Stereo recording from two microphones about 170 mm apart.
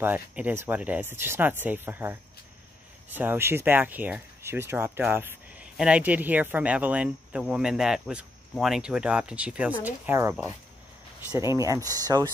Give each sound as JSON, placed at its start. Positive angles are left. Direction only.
{"t": 0.0, "sound": "speech", "side_deg": -10}
{"t": 11.3, "sound": "speech", "side_deg": -15}